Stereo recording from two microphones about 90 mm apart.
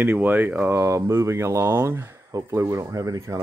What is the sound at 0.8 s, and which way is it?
Speech, 35° right (ahead or behind).